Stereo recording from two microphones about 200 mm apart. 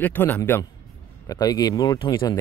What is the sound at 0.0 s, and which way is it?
Speech, 10° left (ahead or behind).